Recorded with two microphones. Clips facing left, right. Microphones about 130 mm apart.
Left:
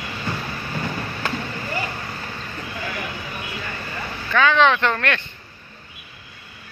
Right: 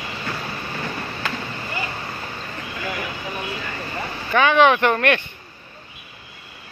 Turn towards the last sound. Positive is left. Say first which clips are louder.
# right 4 dB
turn(degrees=-15)  # may be behind; listen again after turning